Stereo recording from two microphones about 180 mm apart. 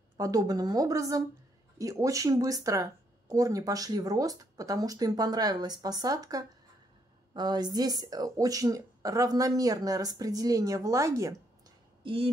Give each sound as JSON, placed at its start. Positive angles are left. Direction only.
{"t": 0.2, "sound": "speech", "side_deg": -20}
{"t": 12.0, "sound": "speech", "side_deg": -30}